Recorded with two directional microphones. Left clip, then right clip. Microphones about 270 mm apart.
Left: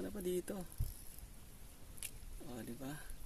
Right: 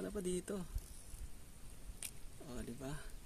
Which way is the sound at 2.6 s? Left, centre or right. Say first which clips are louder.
Even; centre.